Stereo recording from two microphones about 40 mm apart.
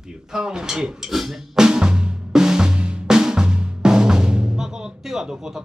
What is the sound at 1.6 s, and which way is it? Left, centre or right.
Drum, centre.